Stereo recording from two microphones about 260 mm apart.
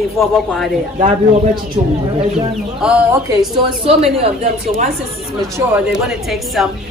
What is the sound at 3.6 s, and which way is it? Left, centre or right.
A woman's voice, right.